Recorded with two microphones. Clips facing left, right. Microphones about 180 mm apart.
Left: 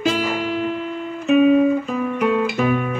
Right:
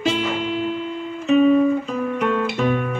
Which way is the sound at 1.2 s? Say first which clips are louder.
Left 1 dB; 5° left (ahead or behind).